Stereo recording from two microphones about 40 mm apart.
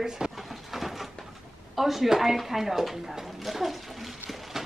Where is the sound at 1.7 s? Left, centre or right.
Centre.